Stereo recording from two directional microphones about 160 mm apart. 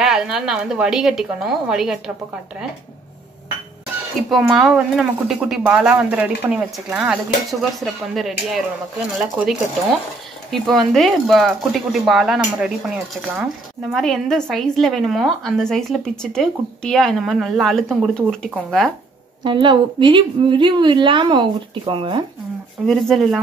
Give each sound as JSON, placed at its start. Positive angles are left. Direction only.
{"t": 0.0, "sound": "speech", "side_deg": -5}
{"t": 4.3, "sound": "speech", "side_deg": 0}
{"t": 19.4, "sound": "a woman's voice", "side_deg": -30}
{"t": 22.8, "sound": "speech", "side_deg": 0}